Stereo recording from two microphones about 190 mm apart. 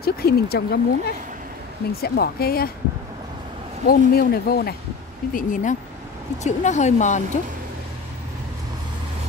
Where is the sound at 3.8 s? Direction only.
55° left (ahead or behind).